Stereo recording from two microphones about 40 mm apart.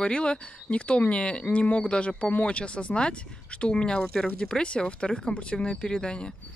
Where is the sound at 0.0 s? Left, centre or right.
Left.